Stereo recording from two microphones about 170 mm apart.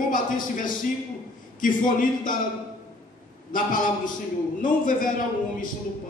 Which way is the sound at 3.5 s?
50° left (ahead or behind).